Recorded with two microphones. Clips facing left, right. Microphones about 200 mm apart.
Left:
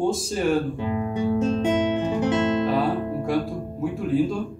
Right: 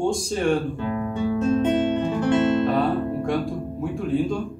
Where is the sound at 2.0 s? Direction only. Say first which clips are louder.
Even; 15° left (ahead or behind).